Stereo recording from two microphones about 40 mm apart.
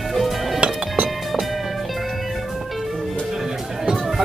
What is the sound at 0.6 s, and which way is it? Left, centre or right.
Music, right.